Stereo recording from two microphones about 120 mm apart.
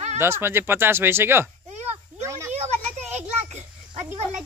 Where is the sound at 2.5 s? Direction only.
65° right (ahead or behind).